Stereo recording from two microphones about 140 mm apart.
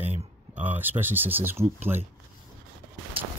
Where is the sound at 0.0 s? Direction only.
55° right (ahead or behind).